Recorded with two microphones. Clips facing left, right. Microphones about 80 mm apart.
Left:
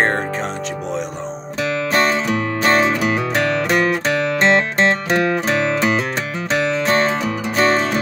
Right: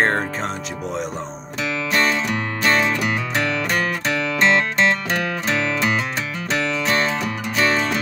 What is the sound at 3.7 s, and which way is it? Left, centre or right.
Music, left.